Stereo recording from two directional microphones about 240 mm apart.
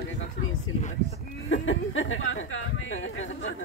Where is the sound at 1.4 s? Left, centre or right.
Left.